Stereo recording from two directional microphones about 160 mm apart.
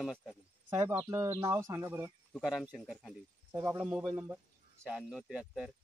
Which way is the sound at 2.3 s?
5° right (ahead or behind).